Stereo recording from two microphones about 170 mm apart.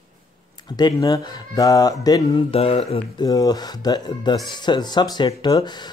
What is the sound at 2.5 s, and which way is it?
Speech, 35° left (ahead or behind).